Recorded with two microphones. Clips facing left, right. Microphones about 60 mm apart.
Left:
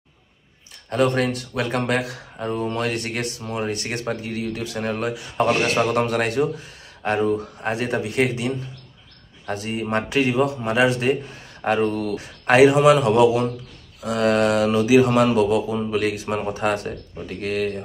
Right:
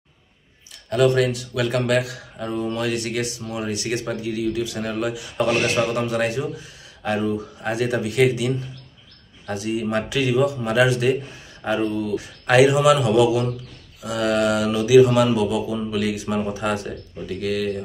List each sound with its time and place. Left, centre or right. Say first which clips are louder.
0.8 s mantra: right 2 dB; left
2.3 s mantra: left 1 dB; left
5.9 s a man's voice: left 1 dB; left
7.0 s mantra: left 2 dB; left
11.6 s a man's voice: left 2 dB; left
12.2 s mantra: left 2 dB; left